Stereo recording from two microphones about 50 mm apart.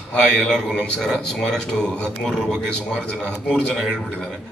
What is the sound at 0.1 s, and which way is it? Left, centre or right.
A man's voice, centre.